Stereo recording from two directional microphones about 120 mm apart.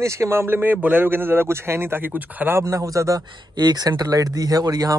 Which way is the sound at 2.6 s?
30° right (ahead or behind).